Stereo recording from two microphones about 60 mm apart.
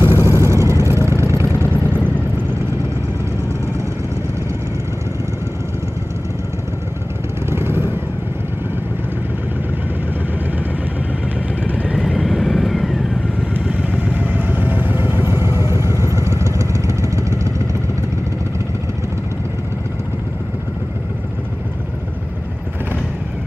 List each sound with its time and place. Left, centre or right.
0.1 s vehicle: left
0.5 s vehicle: right
1.4 s vehicle: left
7.4 s vehicle: right
12.0 s vehicle: centre
13.7 s vehicle: right
15.6 s vehicle: right
15.9 s vehicle: left
16.2 s vehicle: right